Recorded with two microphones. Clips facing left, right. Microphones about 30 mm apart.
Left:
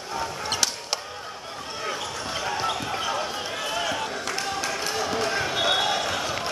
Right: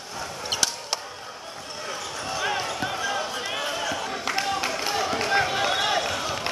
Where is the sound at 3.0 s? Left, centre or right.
Centre.